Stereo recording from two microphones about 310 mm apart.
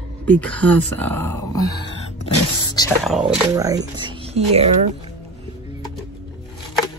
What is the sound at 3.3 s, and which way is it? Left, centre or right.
Speech, centre.